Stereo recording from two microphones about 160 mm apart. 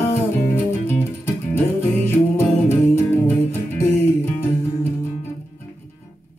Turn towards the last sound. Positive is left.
turn(degrees=15)  # may be behind; listen again after turning